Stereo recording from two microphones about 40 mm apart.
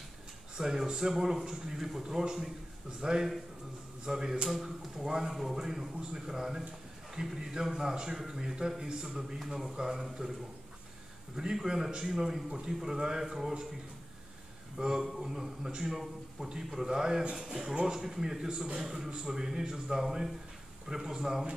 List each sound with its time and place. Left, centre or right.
0.6 s a man's voice: centre
11.3 s a man's voice: centre
14.8 s a man's voice: centre